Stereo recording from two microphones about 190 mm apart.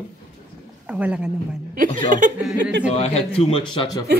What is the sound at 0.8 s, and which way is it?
Speech, 5° right (ahead or behind).